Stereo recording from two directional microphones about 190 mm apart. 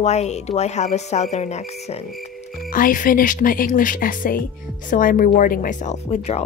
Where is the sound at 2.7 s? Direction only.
45° left (ahead or behind).